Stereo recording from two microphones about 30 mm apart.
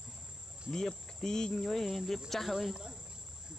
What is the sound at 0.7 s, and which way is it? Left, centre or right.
Cricket, centre.